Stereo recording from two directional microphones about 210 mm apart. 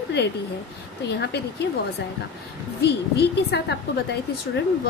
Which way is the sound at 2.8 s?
50° left (ahead or behind).